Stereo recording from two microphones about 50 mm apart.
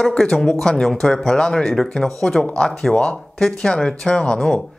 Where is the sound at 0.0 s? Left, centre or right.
Centre.